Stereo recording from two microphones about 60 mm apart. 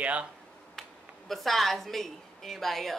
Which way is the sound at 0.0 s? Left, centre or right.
Right.